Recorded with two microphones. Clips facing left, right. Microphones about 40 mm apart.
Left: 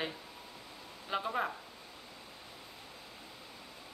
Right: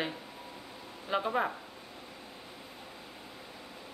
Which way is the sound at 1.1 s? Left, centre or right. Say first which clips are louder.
Right 4 dB; centre.